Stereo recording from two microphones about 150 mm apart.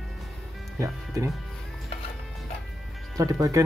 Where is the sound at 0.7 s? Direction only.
20° right (ahead or behind).